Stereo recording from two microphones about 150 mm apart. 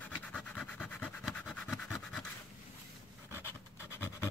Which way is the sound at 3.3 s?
15° left (ahead or behind).